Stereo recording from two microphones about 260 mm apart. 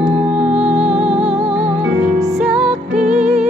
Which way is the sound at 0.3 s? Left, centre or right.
Centre.